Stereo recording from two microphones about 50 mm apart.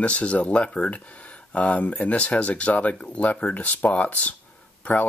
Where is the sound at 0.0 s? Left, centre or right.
Left.